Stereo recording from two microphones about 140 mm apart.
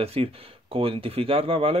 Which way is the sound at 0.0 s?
45° right (ahead or behind).